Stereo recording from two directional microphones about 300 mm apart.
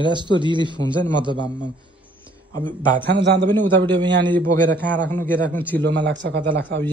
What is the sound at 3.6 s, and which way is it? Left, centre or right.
Speech, centre.